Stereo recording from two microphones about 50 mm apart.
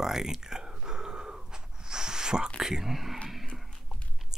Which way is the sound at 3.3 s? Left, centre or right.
Centre.